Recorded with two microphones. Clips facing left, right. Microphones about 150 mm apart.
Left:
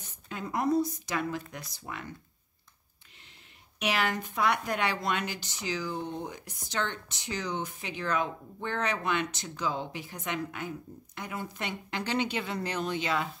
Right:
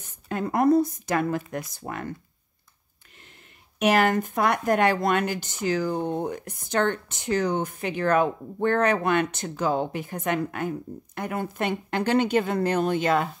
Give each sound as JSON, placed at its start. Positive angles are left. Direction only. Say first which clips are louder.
{"t": 0.0, "sound": "a woman's voice", "louder": "right 9 dB", "side_deg": -50}
{"t": 3.8, "sound": "speech", "louder": "right 9 dB", "side_deg": -50}